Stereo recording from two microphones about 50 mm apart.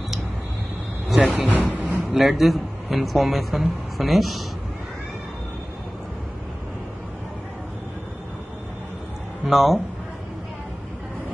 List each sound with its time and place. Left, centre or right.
1.0 s speech: centre
1.5 s speech: right
2.0 s a man's voice: centre
9.5 s speech: centre